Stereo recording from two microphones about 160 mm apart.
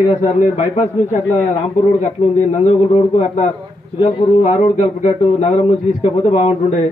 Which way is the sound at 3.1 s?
45° left (ahead or behind).